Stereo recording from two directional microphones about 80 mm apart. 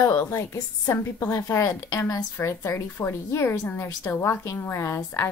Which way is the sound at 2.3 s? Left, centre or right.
Left.